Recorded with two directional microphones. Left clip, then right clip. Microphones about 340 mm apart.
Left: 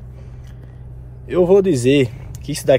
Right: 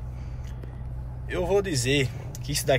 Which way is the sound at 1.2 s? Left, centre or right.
Centre.